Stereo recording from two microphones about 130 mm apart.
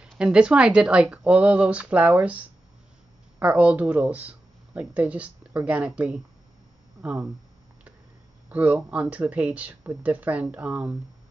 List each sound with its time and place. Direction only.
0.2 s speech: 10° right (ahead or behind)
8.5 s speech: 10° right (ahead or behind)